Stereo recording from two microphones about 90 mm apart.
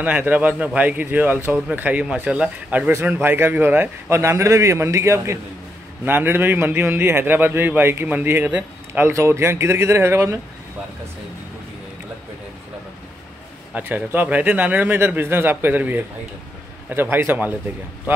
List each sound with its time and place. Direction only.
0.0 s a man's voice: 15° right (ahead or behind)
3.1 s a man's voice: 25° right (ahead or behind)
13.7 s a man's voice: 20° right (ahead or behind)